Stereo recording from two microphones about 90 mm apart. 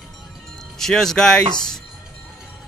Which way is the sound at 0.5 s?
5° left (ahead or behind).